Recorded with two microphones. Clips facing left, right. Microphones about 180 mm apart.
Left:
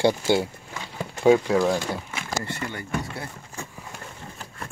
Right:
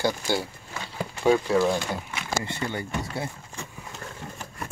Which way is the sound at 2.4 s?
20° right (ahead or behind).